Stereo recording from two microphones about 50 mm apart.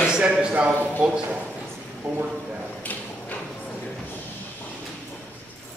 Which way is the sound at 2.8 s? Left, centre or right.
Left.